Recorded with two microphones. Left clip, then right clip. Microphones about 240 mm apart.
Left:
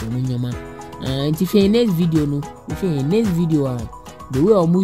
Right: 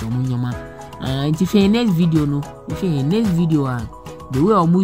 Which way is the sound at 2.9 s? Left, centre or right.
Centre.